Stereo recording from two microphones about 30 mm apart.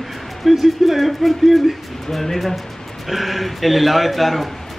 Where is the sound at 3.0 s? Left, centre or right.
Centre.